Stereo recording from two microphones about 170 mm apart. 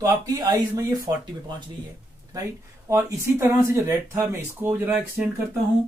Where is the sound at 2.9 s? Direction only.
15° right (ahead or behind).